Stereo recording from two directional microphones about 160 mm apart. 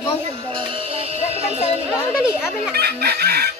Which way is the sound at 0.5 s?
35° right (ahead or behind).